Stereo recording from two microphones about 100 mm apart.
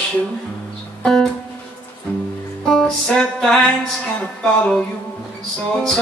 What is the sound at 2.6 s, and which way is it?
Music, 5° left (ahead or behind).